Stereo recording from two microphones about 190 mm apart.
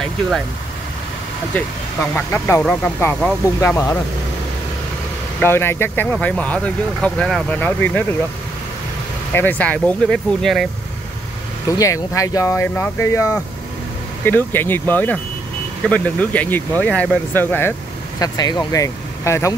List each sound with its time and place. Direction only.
2.1 s speech: 10° left (ahead or behind)
5.4 s speech: 10° left (ahead or behind)
9.3 s speech: 10° left (ahead or behind)
11.8 s speech: 15° left (ahead or behind)